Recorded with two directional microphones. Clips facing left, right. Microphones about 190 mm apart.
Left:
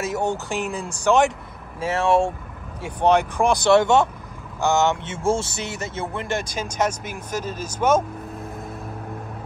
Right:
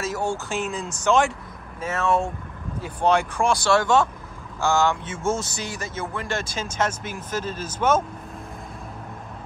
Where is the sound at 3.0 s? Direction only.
15° left (ahead or behind).